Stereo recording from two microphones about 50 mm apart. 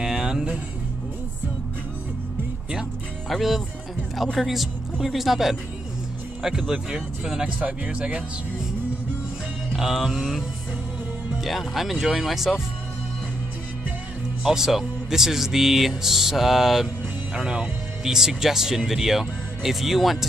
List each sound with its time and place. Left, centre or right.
0.0 s music: centre
3.3 s speech: centre
6.7 s speech: centre
7.6 s speech: right
9.8 s speech: centre
11.4 s speech: centre
14.4 s speech: centre